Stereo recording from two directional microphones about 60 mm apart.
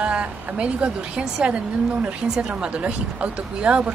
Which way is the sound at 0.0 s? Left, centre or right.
Centre.